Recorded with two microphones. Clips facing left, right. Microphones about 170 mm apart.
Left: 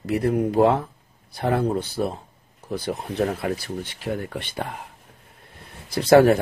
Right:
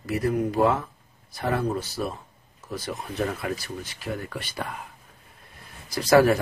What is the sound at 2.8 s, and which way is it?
Speech, 30° left (ahead or behind).